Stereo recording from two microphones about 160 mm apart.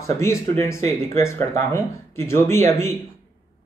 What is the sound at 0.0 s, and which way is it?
Speech, 15° left (ahead or behind).